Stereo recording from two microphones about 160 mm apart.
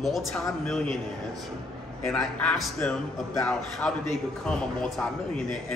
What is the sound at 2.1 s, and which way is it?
Speech, centre (ahead or behind).